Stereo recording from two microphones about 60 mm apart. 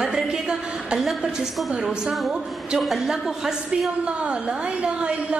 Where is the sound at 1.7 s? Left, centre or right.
Centre.